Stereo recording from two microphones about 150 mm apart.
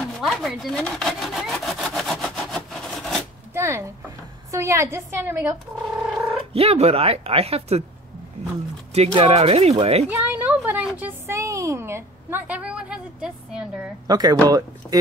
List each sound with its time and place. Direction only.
0.0 s sawing: centre (ahead or behind)
3.5 s a sound: 20° right (ahead or behind)
4.5 s a woman's voice: 20° right (ahead or behind)
6.5 s speech: 40° right (ahead or behind)
8.9 s speech: 40° right (ahead or behind)
10.0 s a sound: 10° right (ahead or behind)
11.0 s a woman's voice: 15° right (ahead or behind)
14.0 s speech: 25° right (ahead or behind)